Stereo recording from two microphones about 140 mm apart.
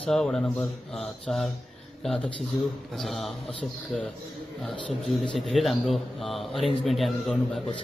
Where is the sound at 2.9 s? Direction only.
Centre (ahead or behind).